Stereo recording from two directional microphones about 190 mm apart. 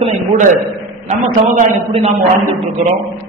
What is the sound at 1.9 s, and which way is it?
Speech, 30° right (ahead or behind).